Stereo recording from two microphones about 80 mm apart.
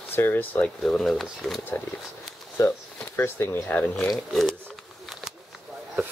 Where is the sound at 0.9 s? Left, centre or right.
Centre.